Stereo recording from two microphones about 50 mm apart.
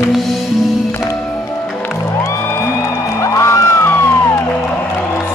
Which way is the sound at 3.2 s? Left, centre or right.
Left.